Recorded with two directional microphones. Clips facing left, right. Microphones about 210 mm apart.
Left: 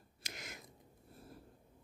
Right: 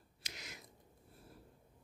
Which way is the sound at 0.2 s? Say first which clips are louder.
Left 3 dB; 50° left (ahead or behind).